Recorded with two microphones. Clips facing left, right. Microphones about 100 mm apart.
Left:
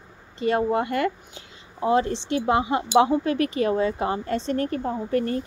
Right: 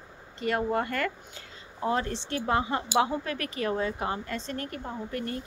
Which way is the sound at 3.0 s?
25° left (ahead or behind).